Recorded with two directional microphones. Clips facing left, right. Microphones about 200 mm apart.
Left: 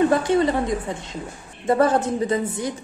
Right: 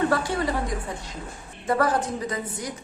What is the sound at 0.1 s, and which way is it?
A woman's voice, 20° left (ahead or behind).